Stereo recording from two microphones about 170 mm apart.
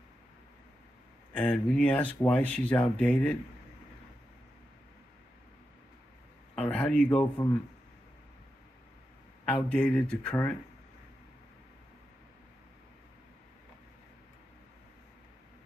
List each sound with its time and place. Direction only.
1.3 s speech: 5° left (ahead or behind)
6.5 s speech: 5° left (ahead or behind)
7.4 s speech: 30° left (ahead or behind)
9.5 s speech: 5° left (ahead or behind)